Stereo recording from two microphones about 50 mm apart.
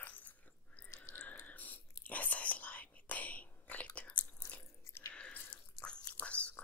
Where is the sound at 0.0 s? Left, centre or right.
Left.